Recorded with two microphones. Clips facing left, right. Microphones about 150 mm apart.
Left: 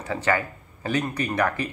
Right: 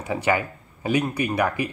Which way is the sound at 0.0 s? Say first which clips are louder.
Right 2 dB; 15° right (ahead or behind).